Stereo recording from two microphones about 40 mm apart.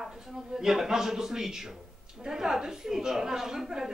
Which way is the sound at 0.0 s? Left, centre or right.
Centre.